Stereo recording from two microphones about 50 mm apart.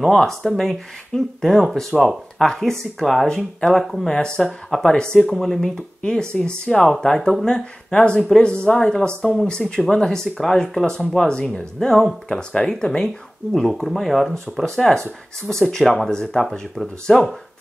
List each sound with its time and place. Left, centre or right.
0.1 s speech: centre
4.1 s speech: centre
5.2 s speech: centre
9.5 s speech: centre
13.5 s speech: centre